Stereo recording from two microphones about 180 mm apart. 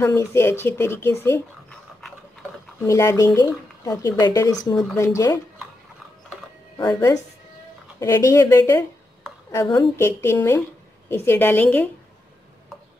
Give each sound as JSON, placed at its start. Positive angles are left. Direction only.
{"t": 0.0, "sound": "speech", "side_deg": 15}
{"t": 1.7, "sound": "toothbrush", "side_deg": 0}
{"t": 2.9, "sound": "speech", "side_deg": 15}
{"t": 6.8, "sound": "speech", "side_deg": 20}